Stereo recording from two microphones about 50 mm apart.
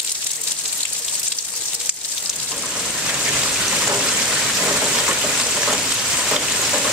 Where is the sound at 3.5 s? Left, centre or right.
Centre.